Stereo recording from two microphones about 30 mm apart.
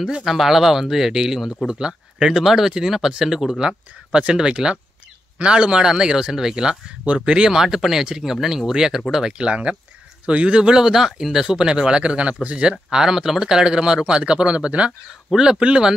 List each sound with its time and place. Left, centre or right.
0.2 s speech: centre
1.8 s speech: right
2.3 s speech: centre
4.1 s speech: right
7.5 s speech: centre
9.4 s speech: right
10.9 s speech: centre
11.5 s speech: right
12.9 s speech: centre
13.6 s speech: right
15.3 s speech: right